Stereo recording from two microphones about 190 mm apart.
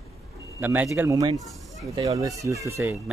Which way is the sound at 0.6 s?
10° right (ahead or behind).